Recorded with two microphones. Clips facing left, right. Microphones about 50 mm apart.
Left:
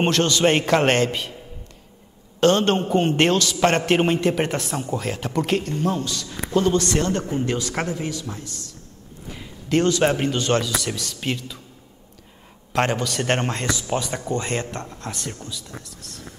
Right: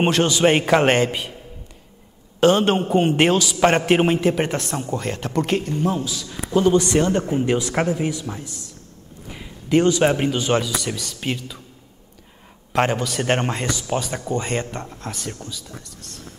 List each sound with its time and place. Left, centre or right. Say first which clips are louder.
0.0 s a man's voice: right 2 dB; centre
2.4 s a man's voice: right 2 dB; centre
12.7 s speech: right 2 dB; centre